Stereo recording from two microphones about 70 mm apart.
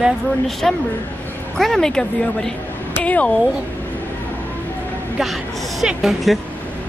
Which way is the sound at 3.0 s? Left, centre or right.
Centre.